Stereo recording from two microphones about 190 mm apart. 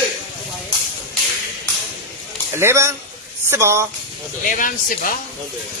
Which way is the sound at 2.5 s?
15° right (ahead or behind).